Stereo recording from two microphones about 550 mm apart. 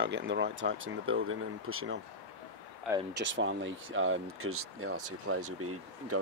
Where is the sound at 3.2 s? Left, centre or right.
Centre.